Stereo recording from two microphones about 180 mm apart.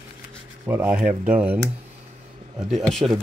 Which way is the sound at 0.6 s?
10° right (ahead or behind).